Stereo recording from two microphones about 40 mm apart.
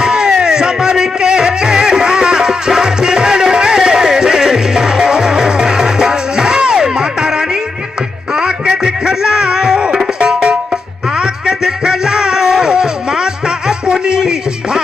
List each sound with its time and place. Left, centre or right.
0.0 s music: centre